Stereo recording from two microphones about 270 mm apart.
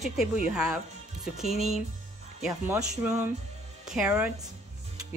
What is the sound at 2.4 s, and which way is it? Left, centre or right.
Speech, centre.